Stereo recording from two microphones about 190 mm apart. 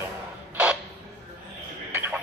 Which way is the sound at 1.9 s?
10° right (ahead or behind).